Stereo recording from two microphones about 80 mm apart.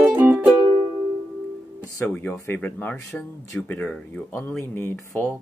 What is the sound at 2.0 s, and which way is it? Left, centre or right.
Speech, left.